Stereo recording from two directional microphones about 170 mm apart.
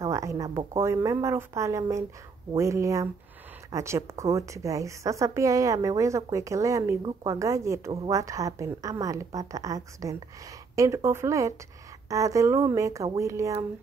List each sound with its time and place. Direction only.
0.0 s a woman's voice: 20° right (ahead or behind)